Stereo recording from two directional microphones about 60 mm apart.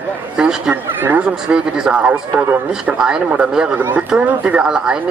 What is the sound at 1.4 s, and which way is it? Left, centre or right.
Speech, centre.